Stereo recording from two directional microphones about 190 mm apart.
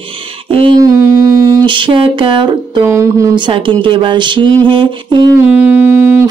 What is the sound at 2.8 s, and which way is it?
A woman's voice, 15° right (ahead or behind).